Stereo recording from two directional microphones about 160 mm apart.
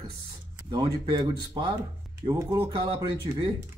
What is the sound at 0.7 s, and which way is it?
Speech, 25° right (ahead or behind).